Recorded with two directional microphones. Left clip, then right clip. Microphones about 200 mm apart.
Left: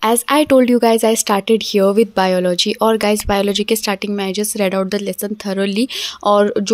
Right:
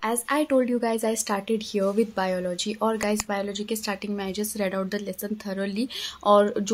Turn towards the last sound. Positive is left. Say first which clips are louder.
# left 6 dB
turn(degrees=30)  # may be behind; listen again after turning